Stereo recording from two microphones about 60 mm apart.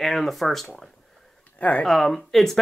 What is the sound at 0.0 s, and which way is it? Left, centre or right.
Speech, centre.